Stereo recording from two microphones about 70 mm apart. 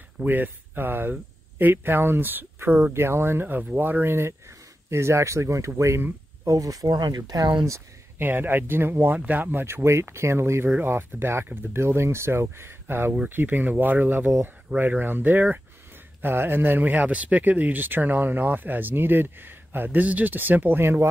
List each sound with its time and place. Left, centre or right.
0.2 s speech: right
6.4 s speech: right
8.2 s speech: right